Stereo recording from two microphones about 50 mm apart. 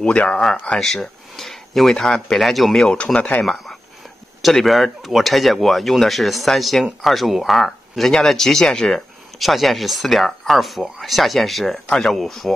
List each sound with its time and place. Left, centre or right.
0.0 s speech: left
0.7 s speech: centre
2.4 s speech: centre
3.0 s speech: centre
4.4 s speech: centre